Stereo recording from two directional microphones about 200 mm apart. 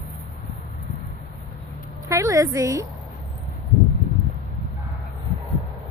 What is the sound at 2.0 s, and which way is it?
Speech, 15° right (ahead or behind).